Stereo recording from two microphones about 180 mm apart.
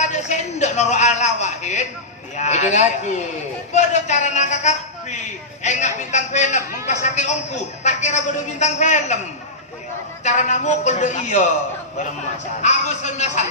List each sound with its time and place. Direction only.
0.0 s a man's voice: 40° left (ahead or behind)
10.2 s a man's voice: 40° left (ahead or behind)
12.6 s a man's voice: 40° left (ahead or behind)